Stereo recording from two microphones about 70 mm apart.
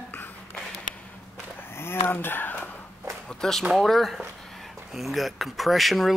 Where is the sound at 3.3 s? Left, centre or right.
Centre.